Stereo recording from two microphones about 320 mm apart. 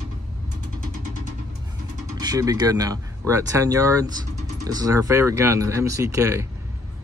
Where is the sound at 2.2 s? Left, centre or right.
Centre.